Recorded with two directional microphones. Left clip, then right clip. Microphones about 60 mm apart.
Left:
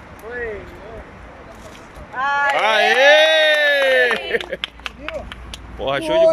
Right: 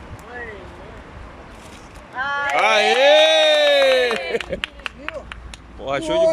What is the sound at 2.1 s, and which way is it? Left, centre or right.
Speech, left.